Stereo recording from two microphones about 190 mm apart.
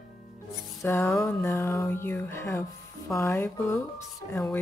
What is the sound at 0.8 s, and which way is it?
Speech, 15° left (ahead or behind).